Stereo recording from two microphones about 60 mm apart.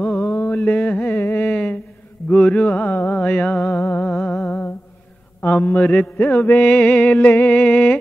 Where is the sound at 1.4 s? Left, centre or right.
Left.